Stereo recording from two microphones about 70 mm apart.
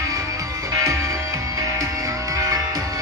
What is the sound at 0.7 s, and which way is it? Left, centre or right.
Music, right.